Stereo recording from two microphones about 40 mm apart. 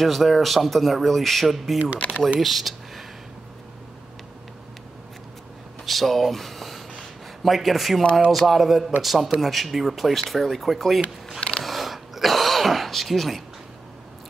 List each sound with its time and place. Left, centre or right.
0.0 s speech: centre
2.0 s speech: left
2.4 s a sound: centre
5.9 s speech: centre
11.6 s throat clearing: centre